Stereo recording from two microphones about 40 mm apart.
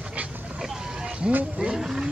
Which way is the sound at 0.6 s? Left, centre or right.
Centre.